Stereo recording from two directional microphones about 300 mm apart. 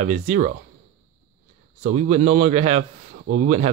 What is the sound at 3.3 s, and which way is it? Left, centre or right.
Speech, right.